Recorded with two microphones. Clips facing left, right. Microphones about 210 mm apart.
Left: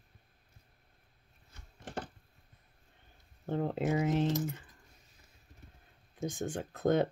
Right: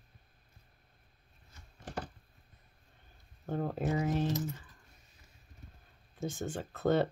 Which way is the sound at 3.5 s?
20° left (ahead or behind).